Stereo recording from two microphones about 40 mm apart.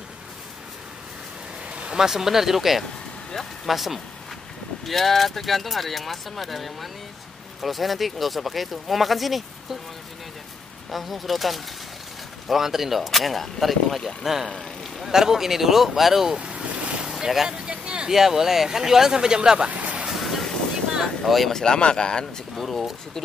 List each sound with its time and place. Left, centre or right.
1.7 s a sound: right
2.0 s speech: centre
10.9 s speech: centre
16.3 s boat: right
17.0 s boat: centre
17.5 s vehicle: right
18.1 s speech: centre
19.7 s music: right
20.1 s vehicle: centre
21.2 s speech: centre
21.5 s speech: centre
22.6 s speech: centre